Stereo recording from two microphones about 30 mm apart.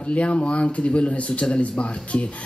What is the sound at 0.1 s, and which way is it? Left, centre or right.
Speech, left.